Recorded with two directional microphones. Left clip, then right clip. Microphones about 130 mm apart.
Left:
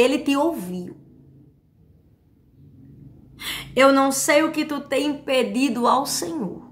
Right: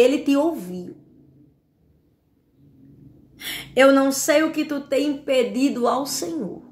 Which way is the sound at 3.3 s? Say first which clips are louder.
Right 1 dB; 20° left (ahead or behind).